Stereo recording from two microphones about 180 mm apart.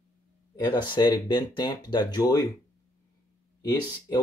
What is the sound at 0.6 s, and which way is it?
Speech, 25° left (ahead or behind).